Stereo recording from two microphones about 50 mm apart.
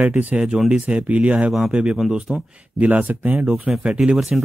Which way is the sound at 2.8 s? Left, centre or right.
Right.